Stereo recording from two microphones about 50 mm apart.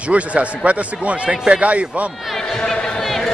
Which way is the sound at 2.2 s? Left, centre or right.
Centre.